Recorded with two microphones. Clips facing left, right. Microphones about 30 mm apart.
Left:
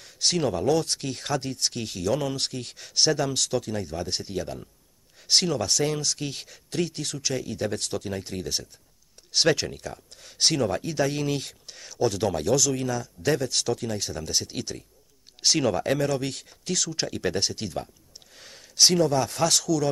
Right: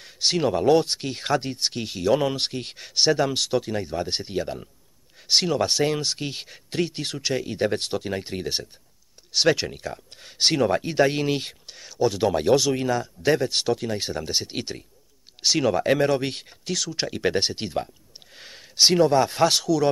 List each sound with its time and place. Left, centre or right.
0.0 s speech: centre
5.6 s speech: right
9.3 s speech: centre; by 11.7 s right
11.7 s speech: centre
12.4 s speech: right
15.4 s speech: centre
16.0 s speech: right
16.6 s speech: centre